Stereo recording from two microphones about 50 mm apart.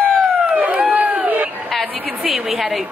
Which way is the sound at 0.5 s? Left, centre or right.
Right.